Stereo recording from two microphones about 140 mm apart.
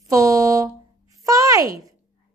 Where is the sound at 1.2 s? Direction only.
25° right (ahead or behind).